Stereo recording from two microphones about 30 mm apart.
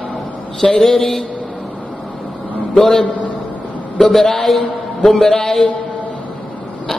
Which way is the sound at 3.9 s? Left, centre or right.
Centre.